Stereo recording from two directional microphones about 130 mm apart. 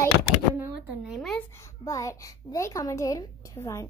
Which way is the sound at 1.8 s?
25° left (ahead or behind).